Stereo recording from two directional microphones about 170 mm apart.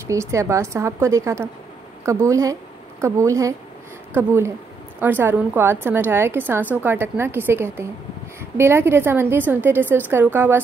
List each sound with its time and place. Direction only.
0.0 s a woman's voice: 15° right (ahead or behind)